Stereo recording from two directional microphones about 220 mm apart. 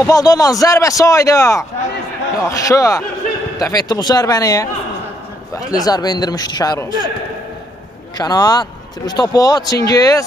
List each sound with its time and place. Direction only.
0.0 s a man's voice: 15° left (ahead or behind)
5.7 s a man's voice: 15° left (ahead or behind)
8.2 s a man's voice: 15° left (ahead or behind)